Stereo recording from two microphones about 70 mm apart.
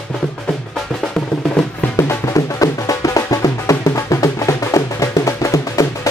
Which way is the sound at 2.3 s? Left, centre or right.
Left.